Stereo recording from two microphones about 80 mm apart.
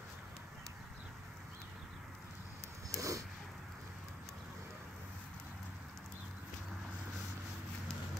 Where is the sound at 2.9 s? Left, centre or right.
Right.